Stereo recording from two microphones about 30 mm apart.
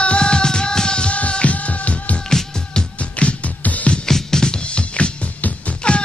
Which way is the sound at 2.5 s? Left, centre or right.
Left.